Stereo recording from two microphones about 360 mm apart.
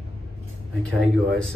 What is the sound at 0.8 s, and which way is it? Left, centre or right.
Speech, centre.